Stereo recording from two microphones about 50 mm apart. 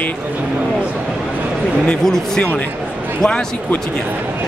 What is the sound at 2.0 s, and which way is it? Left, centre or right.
Speech, centre.